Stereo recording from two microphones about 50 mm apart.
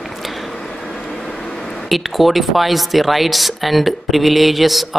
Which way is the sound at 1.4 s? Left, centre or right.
Centre.